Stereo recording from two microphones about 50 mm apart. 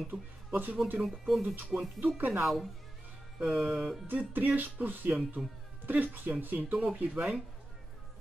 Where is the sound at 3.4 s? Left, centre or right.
Centre.